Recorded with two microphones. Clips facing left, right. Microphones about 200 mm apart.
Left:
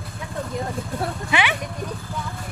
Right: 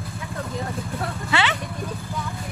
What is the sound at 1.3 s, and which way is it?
Speech, 15° left (ahead or behind).